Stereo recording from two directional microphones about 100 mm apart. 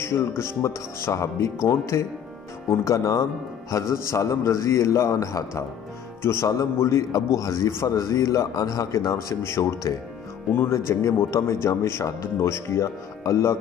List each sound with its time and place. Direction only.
0.0 s a man's voice: 25° left (ahead or behind)